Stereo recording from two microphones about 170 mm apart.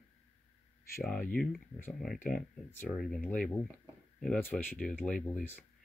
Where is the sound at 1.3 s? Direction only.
5° left (ahead or behind).